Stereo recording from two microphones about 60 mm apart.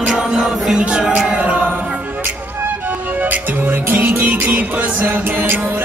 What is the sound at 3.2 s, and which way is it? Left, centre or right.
Music, right.